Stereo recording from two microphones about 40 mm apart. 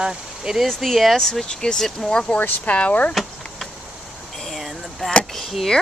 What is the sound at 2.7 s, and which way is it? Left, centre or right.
Speech, left.